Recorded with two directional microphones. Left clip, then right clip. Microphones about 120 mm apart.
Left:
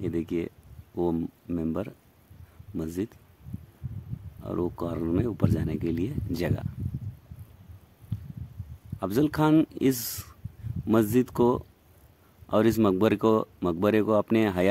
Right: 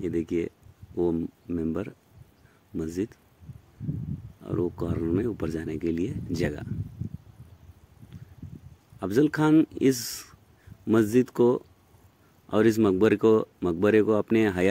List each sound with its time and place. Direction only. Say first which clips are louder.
0.0 s speech: right 2 dB; 15° left (ahead or behind)
4.4 s speech: right 1 dB; 10° left (ahead or behind)
9.0 s speech: right 1 dB; 10° left (ahead or behind)